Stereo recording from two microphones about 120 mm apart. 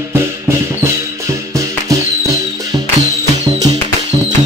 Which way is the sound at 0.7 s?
25° right (ahead or behind).